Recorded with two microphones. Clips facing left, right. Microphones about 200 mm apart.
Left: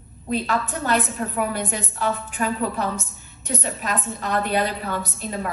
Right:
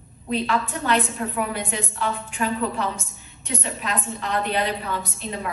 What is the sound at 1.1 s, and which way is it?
A woman's voice, 45° left (ahead or behind).